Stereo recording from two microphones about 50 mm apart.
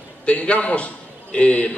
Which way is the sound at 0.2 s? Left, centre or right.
Left.